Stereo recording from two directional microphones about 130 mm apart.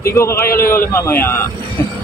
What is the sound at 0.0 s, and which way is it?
A man's voice, 20° left (ahead or behind).